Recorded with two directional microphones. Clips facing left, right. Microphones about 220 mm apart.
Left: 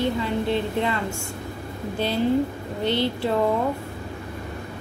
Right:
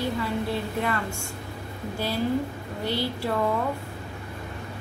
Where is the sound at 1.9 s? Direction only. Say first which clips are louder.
Left 5 dB; 20° left (ahead or behind).